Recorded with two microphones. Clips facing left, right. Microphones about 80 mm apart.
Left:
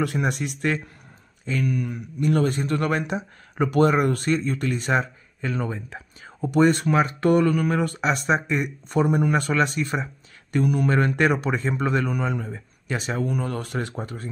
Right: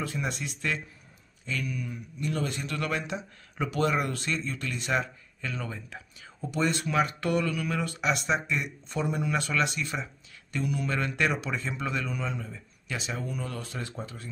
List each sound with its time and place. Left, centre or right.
0.0 s speech: left
6.4 s speech: left